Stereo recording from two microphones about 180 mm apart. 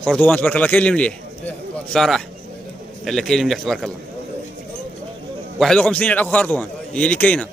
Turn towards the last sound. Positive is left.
turn(degrees=5)  # may be behind; listen again after turning